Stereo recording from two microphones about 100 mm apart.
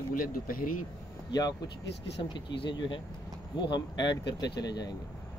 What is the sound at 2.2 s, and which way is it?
Speech, 55° left (ahead or behind).